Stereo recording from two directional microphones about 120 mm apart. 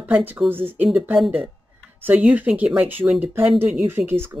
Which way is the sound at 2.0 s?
15° right (ahead or behind).